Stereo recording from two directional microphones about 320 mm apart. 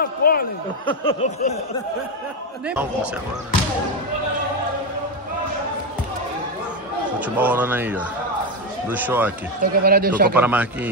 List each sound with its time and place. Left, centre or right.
0.0 s a sound: left
2.6 s speech: centre
7.2 s speech: centre
9.6 s speech: right
10.3 s speech: centre